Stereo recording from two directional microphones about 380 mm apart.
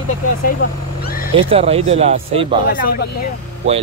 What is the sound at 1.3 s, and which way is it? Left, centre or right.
Speech, centre.